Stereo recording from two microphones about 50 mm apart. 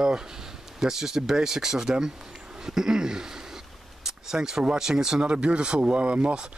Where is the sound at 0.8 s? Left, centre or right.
Centre.